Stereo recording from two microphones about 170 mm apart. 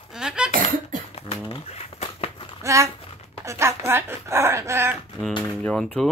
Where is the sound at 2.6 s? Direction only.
20° right (ahead or behind).